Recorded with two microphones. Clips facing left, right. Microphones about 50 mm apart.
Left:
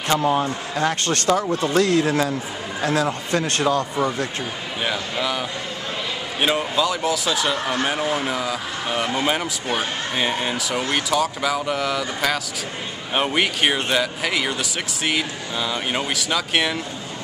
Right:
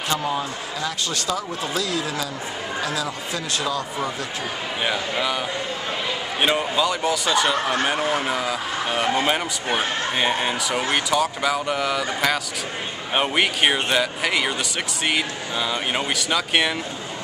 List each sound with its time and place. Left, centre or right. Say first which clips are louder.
0.1 s speech: left 6 dB; left
4.8 s a man's voice: even; centre
6.4 s speech: even; centre